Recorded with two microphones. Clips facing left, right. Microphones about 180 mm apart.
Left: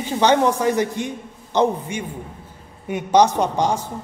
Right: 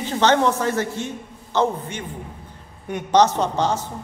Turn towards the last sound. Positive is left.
turn(degrees=15)  # may be behind; listen again after turning